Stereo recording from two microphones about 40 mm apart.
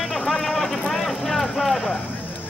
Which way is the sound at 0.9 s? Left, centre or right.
Centre.